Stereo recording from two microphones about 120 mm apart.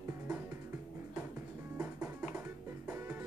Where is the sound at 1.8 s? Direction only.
15° right (ahead or behind).